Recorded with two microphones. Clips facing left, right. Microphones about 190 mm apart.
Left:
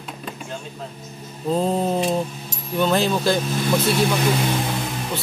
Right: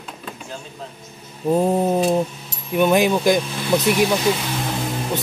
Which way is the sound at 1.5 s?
15° right (ahead or behind).